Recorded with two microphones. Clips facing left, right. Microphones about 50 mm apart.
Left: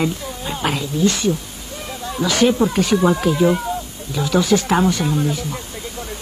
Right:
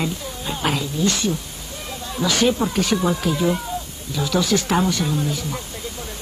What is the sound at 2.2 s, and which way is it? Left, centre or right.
Speech, left.